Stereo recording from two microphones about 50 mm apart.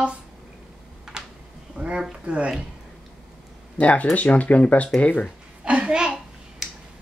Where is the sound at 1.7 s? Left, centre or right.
Centre.